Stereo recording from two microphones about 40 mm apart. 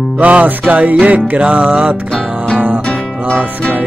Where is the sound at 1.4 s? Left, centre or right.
Right.